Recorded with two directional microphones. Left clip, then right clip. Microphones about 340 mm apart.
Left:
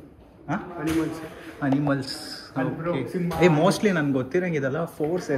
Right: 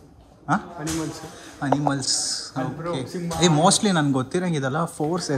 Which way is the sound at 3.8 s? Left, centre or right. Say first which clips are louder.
Right 1 dB; centre.